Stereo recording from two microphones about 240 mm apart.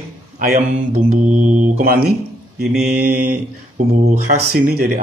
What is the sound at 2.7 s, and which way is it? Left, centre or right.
Mantra, centre.